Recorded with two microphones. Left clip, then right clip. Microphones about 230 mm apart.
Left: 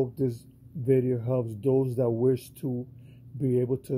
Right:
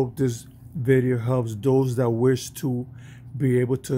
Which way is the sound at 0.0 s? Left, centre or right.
Centre.